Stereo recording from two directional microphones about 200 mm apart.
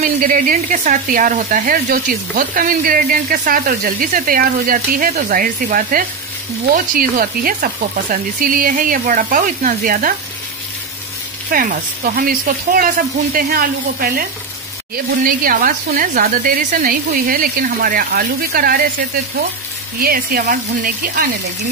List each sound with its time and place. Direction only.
0.2 s speech: 40° right (ahead or behind)
11.5 s speech: 45° right (ahead or behind)
15.2 s speech: 45° right (ahead or behind)
20.0 s speech: 45° right (ahead or behind)